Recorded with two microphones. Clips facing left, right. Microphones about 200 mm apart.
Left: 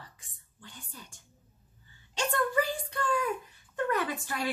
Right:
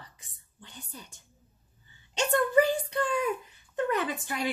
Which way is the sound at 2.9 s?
20° right (ahead or behind).